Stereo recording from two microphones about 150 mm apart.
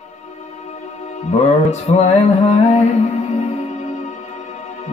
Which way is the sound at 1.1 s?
50° left (ahead or behind).